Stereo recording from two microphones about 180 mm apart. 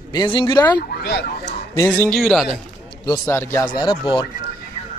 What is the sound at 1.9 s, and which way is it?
Speech, 5° left (ahead or behind).